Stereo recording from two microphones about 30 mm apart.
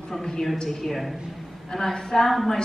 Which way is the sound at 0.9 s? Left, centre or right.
Centre.